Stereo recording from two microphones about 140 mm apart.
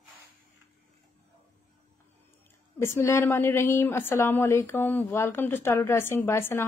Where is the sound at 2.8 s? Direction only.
20° left (ahead or behind).